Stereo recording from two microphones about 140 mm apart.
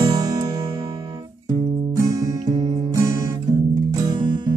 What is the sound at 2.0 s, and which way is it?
Music, 25° right (ahead or behind).